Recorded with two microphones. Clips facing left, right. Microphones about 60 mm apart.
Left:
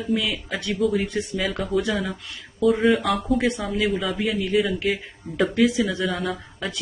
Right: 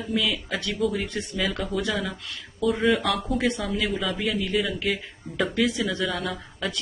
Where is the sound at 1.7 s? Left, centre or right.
Centre.